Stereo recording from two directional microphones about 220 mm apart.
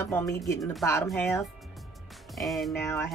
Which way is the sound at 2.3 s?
Centre (ahead or behind).